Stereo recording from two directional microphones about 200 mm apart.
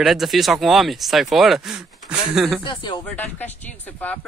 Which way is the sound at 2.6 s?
25° left (ahead or behind).